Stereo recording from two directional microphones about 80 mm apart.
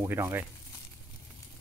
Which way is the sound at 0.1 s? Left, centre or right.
Right.